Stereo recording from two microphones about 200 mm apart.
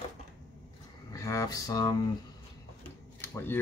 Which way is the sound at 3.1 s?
10° left (ahead or behind).